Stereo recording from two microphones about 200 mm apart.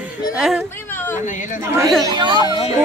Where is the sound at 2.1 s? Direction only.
20° right (ahead or behind).